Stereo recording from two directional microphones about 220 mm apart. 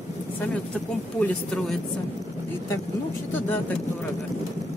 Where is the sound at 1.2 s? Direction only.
Centre (ahead or behind).